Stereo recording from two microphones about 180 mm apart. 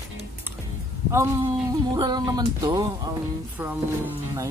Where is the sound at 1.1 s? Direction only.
15° right (ahead or behind).